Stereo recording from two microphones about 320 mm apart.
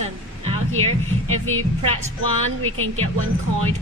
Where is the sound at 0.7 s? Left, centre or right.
Right.